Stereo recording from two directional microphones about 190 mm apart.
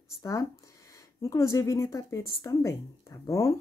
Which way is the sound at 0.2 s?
15° left (ahead or behind).